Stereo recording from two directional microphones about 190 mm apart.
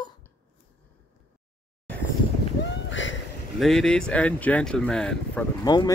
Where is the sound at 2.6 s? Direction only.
75° left (ahead or behind).